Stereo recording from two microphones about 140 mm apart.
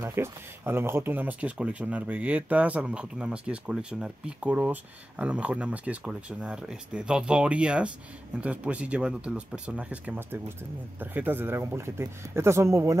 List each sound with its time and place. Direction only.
0.0 s speech: 15° right (ahead or behind)